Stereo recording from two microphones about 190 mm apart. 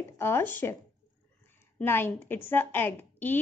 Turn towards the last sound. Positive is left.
turn(degrees=10)  # may be behind; listen again after turning